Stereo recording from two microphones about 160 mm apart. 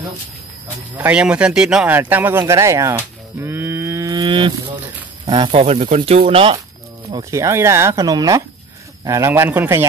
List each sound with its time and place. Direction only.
0.9 s speech: 10° right (ahead or behind); by 6.6 s 35° right (ahead or behind)
7.2 s speech: 20° right (ahead or behind)